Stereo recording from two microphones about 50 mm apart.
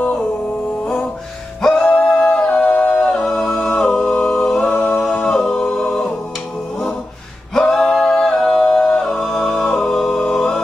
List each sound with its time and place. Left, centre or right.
1.6 s music: centre
2.4 s music: left
2.8 s humming: centre
4.7 s a capella: centre
7.5 s a capella: centre
7.9 s music: centre